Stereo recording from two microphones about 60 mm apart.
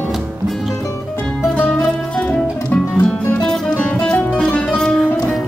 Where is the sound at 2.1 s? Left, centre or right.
Left.